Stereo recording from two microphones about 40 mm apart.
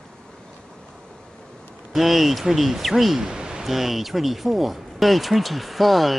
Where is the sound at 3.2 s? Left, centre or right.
Centre.